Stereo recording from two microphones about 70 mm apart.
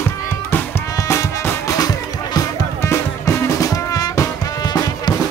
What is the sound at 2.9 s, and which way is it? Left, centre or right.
Music, left.